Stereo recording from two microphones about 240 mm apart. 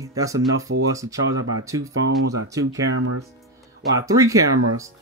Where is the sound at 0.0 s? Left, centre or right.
Centre.